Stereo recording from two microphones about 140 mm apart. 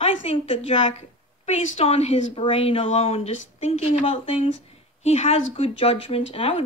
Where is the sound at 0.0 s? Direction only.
45° left (ahead or behind).